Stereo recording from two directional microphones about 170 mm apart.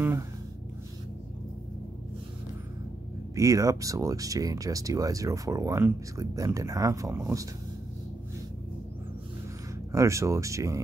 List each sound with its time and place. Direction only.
3.3 s speech: 20° right (ahead or behind)
9.9 s speech: 20° right (ahead or behind)